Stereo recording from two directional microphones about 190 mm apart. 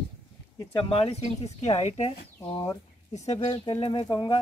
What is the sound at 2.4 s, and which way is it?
Speech, 25° left (ahead or behind).